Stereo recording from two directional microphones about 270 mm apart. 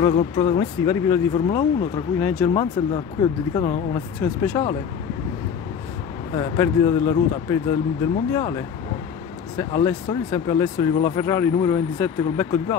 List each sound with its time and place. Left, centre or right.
0.0 s speech: centre
6.3 s speech: centre